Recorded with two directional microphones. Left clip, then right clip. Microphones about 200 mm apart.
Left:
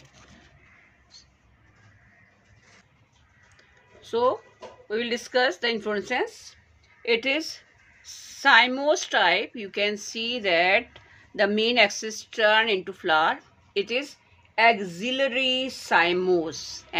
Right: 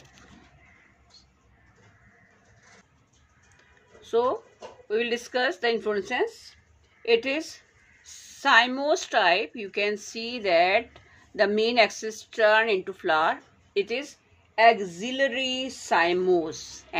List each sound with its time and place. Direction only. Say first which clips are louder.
4.0 s a woman's voice: left 1 dB; 20° left (ahead or behind)